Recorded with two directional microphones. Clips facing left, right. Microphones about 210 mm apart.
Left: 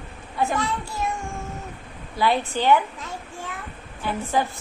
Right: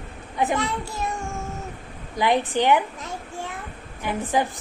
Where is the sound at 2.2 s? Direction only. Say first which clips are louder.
Right 2 dB; 15° right (ahead or behind).